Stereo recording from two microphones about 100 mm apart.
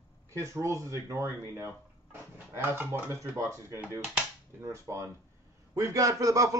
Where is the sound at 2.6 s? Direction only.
20° right (ahead or behind).